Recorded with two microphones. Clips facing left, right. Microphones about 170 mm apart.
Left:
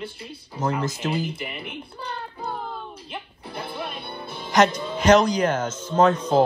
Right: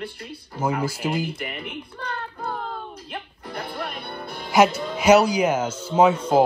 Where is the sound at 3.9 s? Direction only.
Centre (ahead or behind).